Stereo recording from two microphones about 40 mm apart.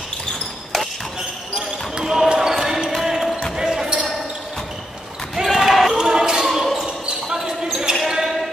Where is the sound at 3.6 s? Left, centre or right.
Centre.